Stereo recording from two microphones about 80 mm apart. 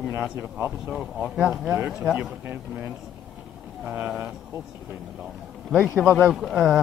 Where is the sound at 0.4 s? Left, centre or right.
Right.